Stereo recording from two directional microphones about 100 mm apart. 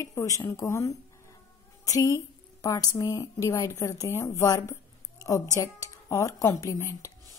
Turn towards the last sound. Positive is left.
turn(degrees=30)  # may be behind; listen again after turning